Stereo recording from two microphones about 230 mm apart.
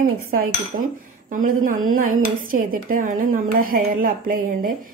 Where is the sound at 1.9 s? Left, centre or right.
Right.